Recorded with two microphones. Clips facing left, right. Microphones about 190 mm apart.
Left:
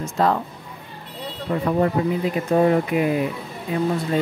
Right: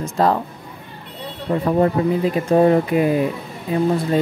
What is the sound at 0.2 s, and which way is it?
Speech, 40° right (ahead or behind).